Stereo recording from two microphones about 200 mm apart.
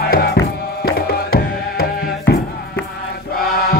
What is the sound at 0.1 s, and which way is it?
Music, 50° left (ahead or behind).